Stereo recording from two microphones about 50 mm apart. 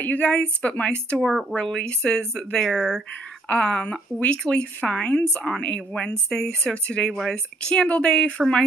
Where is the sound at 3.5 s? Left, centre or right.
Left.